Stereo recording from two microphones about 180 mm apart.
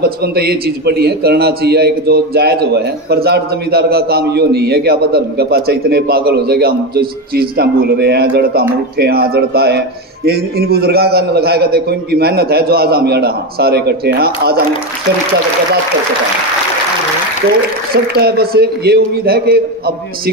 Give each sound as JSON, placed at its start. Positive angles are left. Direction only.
{"t": 0.0, "sound": "a man's voice", "side_deg": -60}
{"t": 17.9, "sound": "a man's voice", "side_deg": -60}